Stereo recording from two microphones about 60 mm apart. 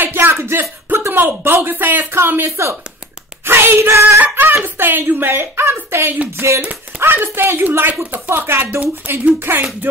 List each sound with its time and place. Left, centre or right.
0.0 s speech: right
7.0 s speech: right
9.4 s speech: right